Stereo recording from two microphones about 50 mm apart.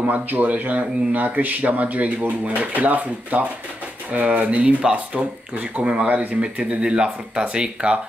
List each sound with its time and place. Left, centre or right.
0.0 s speech: right; by 8.0 s centre